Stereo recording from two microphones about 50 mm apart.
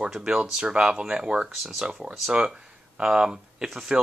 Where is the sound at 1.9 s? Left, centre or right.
Centre.